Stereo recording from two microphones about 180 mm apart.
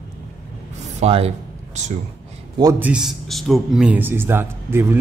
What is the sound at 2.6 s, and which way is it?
Speech, 15° right (ahead or behind).